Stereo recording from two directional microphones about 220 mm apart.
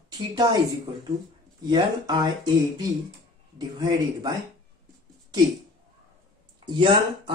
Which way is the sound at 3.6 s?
20° right (ahead or behind).